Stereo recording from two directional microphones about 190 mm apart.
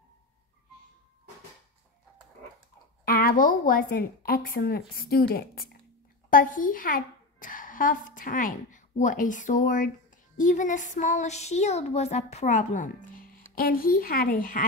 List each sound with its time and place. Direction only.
3.1 s a woman's voice: 50° left (ahead or behind)